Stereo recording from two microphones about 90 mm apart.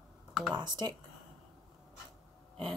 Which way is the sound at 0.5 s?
55° right (ahead or behind).